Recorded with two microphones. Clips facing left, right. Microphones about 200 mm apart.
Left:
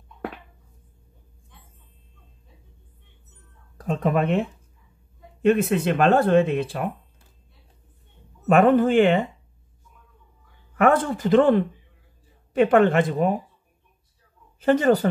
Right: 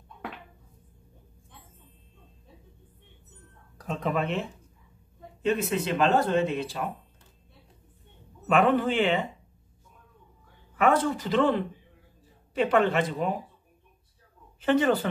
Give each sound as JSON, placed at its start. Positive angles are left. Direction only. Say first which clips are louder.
{"t": 3.8, "sound": "speech", "louder": "left 6 dB", "side_deg": 50}
{"t": 8.5, "sound": "speech", "louder": "left 6 dB", "side_deg": 50}
{"t": 10.8, "sound": "speech", "louder": "left 4 dB", "side_deg": 50}
{"t": 14.6, "sound": "speech", "louder": "left 5 dB", "side_deg": 40}